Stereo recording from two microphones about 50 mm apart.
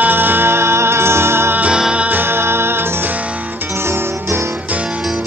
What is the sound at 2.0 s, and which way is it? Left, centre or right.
Music, right.